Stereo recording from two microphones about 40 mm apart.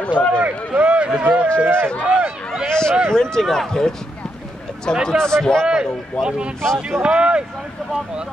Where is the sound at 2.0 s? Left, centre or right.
Right.